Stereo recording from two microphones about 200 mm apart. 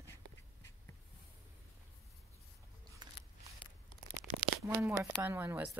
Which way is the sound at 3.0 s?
20° right (ahead or behind).